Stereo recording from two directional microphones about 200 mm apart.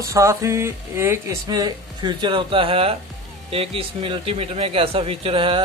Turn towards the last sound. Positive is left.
turn(degrees=-25)  # may be behind; listen again after turning